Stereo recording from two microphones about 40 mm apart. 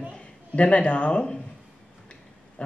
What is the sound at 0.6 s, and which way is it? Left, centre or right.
Speech, left.